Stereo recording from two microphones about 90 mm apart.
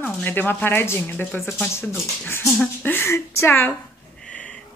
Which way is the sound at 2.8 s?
25° left (ahead or behind).